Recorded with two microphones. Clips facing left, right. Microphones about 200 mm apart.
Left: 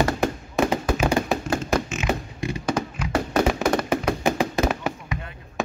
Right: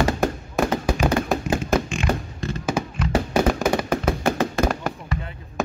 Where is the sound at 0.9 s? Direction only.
Centre (ahead or behind).